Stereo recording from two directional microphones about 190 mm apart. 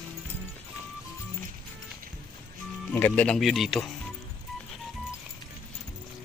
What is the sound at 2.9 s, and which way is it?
Speech, 10° left (ahead or behind).